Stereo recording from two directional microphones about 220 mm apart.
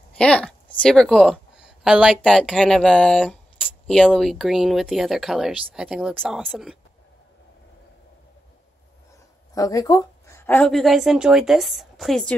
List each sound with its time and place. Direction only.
0.2 s a woman's voice: 5° left (ahead or behind)
9.6 s a woman's voice: 15° left (ahead or behind)